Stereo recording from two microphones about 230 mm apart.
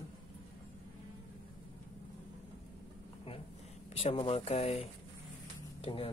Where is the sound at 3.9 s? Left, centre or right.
Left.